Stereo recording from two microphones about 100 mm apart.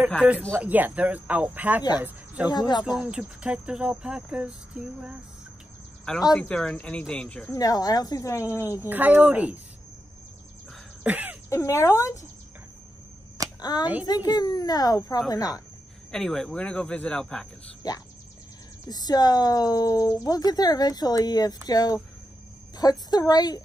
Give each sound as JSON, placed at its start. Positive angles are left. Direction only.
{"t": 0.6, "sound": "a woman's voice", "side_deg": -15}
{"t": 2.5, "sound": "speech", "side_deg": 45}
{"t": 3.0, "sound": "speech", "side_deg": -10}
{"t": 6.1, "sound": "speech", "side_deg": 5}
{"t": 7.5, "sound": "a woman's voice", "side_deg": 40}
{"t": 8.8, "sound": "speech", "side_deg": -20}
{"t": 11.1, "sound": "speech", "side_deg": -15}
{"t": 11.4, "sound": "speech", "side_deg": 30}
{"t": 13.6, "sound": "speech", "side_deg": 45}
{"t": 16.1, "sound": "speech", "side_deg": 5}
{"t": 18.9, "sound": "speech", "side_deg": 40}